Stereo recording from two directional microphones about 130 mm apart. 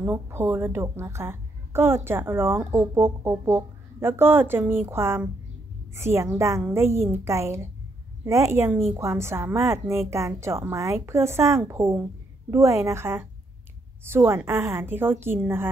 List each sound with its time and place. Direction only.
0.0 s a woman's voice: 20° right (ahead or behind)